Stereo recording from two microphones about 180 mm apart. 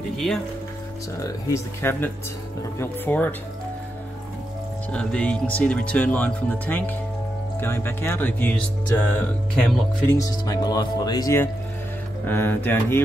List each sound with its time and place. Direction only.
1.2 s speech: 15° left (ahead or behind)
4.9 s speech: 5° left (ahead or behind)
10.2 s speech: 20° left (ahead or behind)